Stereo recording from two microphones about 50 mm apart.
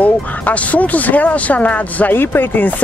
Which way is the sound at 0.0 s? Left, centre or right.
Left.